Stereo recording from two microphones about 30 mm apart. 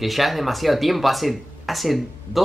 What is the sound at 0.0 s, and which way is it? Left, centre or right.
Speech, centre.